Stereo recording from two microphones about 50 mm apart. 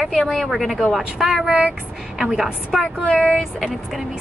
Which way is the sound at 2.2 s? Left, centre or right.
Centre.